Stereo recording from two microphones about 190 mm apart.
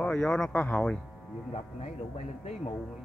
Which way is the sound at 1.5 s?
35° left (ahead or behind).